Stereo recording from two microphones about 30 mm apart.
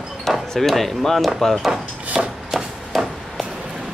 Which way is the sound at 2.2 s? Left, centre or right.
Centre.